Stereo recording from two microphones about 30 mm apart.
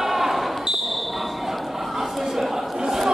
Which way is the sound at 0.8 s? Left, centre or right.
Centre.